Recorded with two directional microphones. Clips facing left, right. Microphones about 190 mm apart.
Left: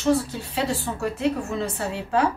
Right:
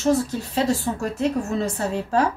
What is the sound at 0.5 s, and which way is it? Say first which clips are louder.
A woman's voice: right 4 dB; 45° right (ahead or behind).